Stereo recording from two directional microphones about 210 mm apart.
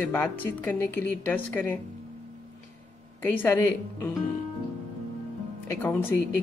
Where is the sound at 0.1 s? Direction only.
10° left (ahead or behind).